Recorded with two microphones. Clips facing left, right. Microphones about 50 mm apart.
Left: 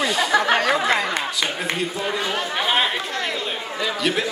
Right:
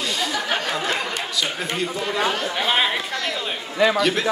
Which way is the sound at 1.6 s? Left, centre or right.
Centre.